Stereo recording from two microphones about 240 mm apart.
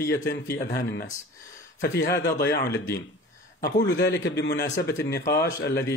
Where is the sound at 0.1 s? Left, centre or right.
Left.